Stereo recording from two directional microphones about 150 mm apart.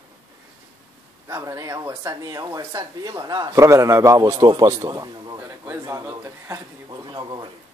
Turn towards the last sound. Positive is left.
turn(degrees=-30)  # may be behind; listen again after turning